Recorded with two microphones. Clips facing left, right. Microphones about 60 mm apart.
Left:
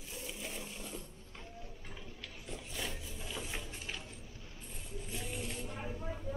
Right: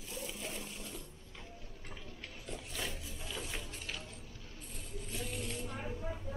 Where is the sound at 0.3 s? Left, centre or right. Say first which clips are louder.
Even; centre.